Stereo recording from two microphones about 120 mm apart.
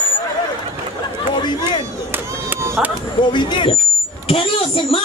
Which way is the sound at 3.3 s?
40° left (ahead or behind).